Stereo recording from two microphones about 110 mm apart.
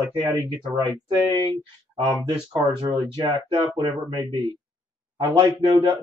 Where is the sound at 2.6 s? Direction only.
45° right (ahead or behind).